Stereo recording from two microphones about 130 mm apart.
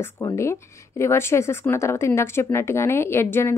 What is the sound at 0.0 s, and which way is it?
Speech, 20° left (ahead or behind).